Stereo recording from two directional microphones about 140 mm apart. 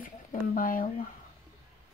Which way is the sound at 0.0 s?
90° left.